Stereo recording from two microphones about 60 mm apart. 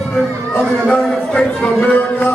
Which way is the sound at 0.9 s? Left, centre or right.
Centre.